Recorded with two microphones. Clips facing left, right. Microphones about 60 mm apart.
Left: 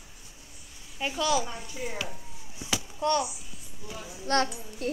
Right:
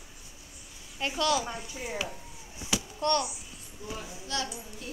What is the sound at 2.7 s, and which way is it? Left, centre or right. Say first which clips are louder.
Speech: left 1 dB; centre.